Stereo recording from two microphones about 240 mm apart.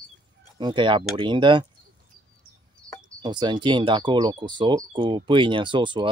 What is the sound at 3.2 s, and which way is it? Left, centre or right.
Speech, centre.